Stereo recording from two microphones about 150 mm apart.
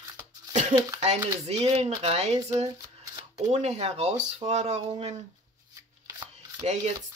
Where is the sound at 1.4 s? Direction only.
45° right (ahead or behind).